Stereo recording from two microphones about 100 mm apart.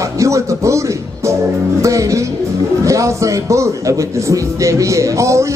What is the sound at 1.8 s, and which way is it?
Speech, 30° right (ahead or behind).